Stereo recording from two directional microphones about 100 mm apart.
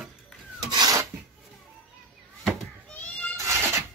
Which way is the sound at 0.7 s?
40° right (ahead or behind).